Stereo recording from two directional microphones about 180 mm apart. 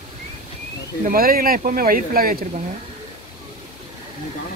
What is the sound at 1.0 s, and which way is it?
Speech, 55° right (ahead or behind).